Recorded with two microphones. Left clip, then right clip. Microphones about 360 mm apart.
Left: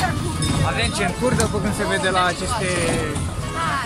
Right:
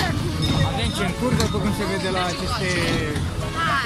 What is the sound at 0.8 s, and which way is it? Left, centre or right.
Music, left.